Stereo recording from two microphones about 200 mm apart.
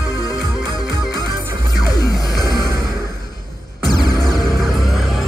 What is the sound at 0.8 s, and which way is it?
Music, 20° left (ahead or behind).